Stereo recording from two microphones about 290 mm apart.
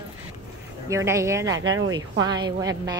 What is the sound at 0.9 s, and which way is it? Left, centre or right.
Speech, centre.